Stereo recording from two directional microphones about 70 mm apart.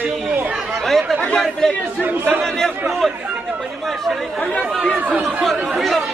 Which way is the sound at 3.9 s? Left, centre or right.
Centre.